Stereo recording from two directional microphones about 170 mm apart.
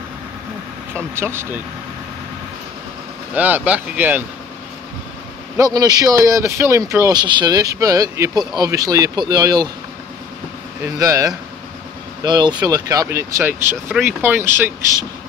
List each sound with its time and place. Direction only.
0.9 s speech: 15° right (ahead or behind)
3.3 s speech: 10° right (ahead or behind)
5.6 s speech: 20° right (ahead or behind)
10.8 s speech: 20° right (ahead or behind)